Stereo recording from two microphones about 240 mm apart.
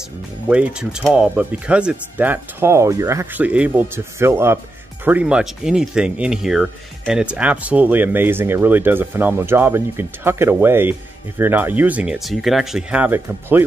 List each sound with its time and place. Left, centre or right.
0.5 s speech: centre